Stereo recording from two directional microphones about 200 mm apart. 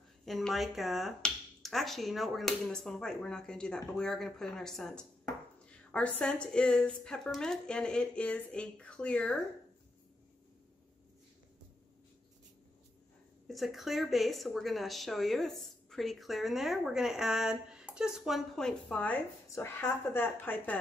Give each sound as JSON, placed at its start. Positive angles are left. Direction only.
{"t": 0.2, "sound": "speech", "side_deg": 0}
{"t": 13.5, "sound": "speech", "side_deg": 0}